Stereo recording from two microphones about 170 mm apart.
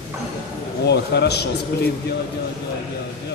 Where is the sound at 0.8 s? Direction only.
80° left.